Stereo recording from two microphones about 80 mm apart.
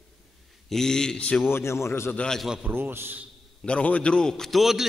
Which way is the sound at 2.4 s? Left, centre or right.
Centre.